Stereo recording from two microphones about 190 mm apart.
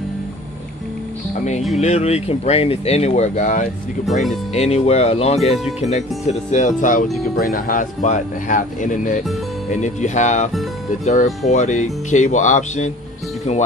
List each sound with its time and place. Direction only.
1.8 s speech: 35° left (ahead or behind)